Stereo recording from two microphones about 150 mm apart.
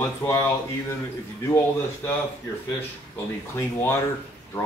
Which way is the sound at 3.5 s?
20° left (ahead or behind).